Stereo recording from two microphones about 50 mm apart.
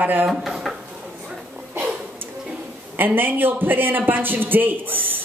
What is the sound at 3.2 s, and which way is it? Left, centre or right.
Speech, right.